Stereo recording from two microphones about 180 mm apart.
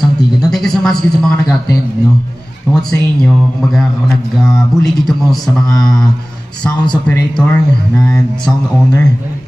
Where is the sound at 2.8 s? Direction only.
Centre (ahead or behind).